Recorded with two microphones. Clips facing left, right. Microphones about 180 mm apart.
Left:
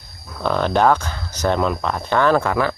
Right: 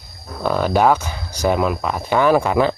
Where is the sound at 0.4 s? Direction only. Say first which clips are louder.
Right 1 dB; 5° right (ahead or behind).